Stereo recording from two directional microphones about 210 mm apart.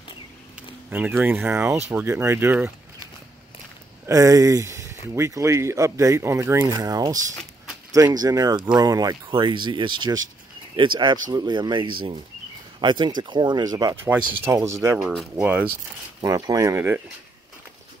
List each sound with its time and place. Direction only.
0.8 s speech: 10° right (ahead or behind)
4.0 s speech: 15° right (ahead or behind)
15.0 s speech: 5° right (ahead or behind)
16.2 s speech: 15° right (ahead or behind)